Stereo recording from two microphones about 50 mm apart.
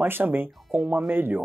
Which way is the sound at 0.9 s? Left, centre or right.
Right.